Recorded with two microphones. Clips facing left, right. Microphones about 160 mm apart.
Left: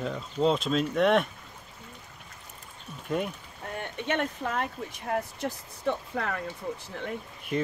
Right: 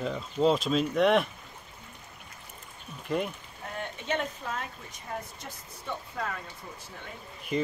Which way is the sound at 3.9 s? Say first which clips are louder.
Left 4 dB; 60° left (ahead or behind).